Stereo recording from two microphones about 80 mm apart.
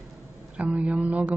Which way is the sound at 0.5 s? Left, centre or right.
Centre.